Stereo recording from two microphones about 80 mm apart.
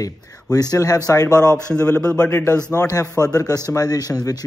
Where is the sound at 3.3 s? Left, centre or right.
Left.